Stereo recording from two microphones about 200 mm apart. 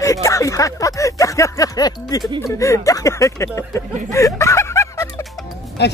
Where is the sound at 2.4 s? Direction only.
15° left (ahead or behind).